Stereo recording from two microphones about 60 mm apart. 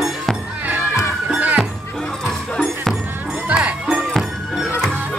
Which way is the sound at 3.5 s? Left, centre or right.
Centre.